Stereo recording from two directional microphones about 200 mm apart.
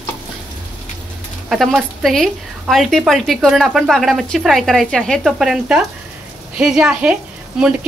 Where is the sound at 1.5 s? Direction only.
Centre (ahead or behind).